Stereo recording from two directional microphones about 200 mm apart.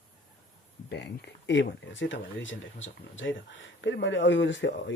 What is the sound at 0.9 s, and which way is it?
Speech, 55° left (ahead or behind).